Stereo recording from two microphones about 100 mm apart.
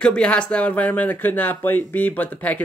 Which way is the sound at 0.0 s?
10° left (ahead or behind).